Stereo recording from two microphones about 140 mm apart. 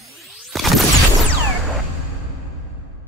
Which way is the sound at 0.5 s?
Centre (ahead or behind).